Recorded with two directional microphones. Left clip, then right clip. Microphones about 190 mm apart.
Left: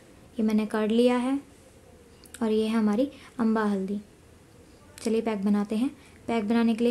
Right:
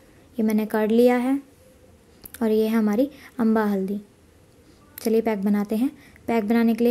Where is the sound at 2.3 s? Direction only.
20° right (ahead or behind).